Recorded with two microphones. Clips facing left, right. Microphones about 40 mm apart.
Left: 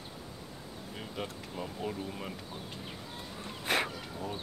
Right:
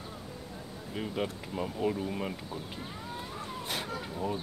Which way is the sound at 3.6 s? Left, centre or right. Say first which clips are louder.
Left 8 dB; left.